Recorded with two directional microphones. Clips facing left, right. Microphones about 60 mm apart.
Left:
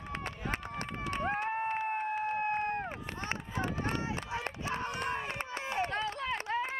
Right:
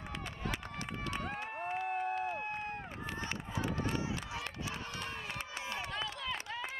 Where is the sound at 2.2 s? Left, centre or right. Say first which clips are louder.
Left 6 dB; left.